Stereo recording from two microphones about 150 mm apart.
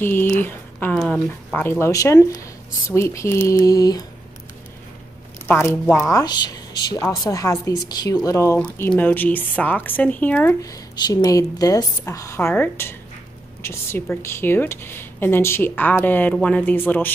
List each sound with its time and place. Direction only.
0.0 s speech: 10° left (ahead or behind)
5.5 s a woman's voice: 15° left (ahead or behind)
10.6 s a woman's voice: 25° left (ahead or behind)